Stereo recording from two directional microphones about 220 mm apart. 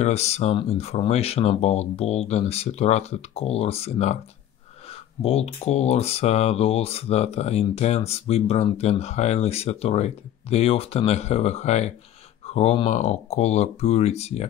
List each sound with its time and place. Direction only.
0.0 s speech: 30° left (ahead or behind)